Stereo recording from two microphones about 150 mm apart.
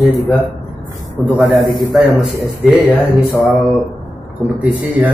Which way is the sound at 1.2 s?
10° right (ahead or behind).